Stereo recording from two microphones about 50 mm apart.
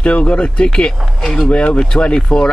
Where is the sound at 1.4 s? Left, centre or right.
Left.